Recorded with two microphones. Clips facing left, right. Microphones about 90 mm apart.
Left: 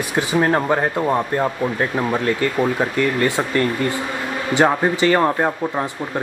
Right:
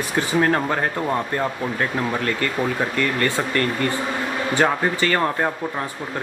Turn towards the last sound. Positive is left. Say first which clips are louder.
# left 3 dB
turn(degrees=15)  # may be behind; listen again after turning